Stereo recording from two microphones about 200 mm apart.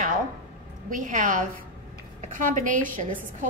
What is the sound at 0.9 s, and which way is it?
A woman's voice, 40° right (ahead or behind).